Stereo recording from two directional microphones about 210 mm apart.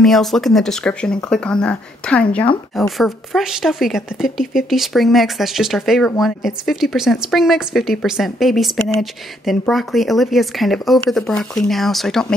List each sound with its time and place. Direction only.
0.0 s speech: centre (ahead or behind)